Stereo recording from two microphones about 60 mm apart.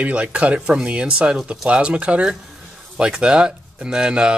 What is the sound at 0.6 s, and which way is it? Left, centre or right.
Speech, centre.